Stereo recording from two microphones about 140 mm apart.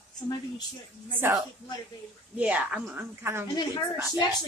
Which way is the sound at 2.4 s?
10° right (ahead or behind).